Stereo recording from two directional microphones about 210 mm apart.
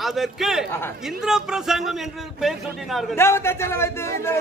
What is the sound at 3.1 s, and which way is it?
A man's voice, 10° left (ahead or behind).